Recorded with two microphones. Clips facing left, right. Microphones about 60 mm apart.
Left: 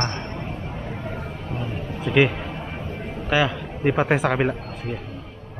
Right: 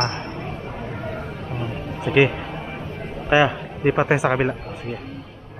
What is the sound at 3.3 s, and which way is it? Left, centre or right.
Speech, right.